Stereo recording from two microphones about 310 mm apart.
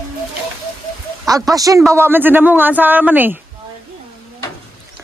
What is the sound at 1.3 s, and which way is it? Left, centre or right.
Speech, centre.